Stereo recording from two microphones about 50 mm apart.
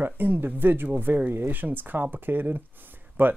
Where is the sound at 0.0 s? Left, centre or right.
Right.